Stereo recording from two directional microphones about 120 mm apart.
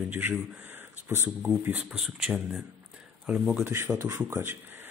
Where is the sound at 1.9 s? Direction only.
5° right (ahead or behind).